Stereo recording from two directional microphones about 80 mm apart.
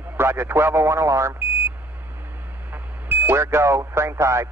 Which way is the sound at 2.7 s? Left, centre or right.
Right.